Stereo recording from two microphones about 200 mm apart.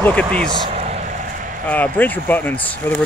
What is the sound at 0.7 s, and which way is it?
Vehicle, 35° right (ahead or behind).